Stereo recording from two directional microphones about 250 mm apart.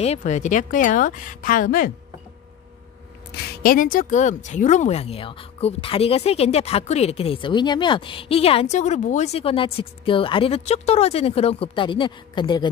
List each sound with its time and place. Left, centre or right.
0.0 s speech: left
3.3 s speech: left; by 12.6 s centre